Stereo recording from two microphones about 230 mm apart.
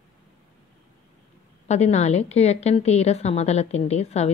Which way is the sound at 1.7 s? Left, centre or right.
Left.